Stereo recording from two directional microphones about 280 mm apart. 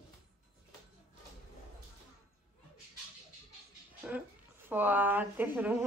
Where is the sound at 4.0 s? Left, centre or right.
Centre.